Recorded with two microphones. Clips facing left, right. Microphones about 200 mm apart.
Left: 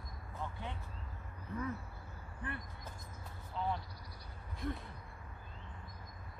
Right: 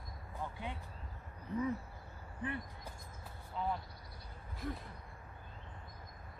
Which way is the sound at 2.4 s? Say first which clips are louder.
Right 4 dB; 20° right (ahead or behind).